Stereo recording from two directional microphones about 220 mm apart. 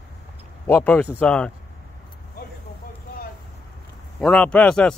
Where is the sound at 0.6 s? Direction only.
10° left (ahead or behind).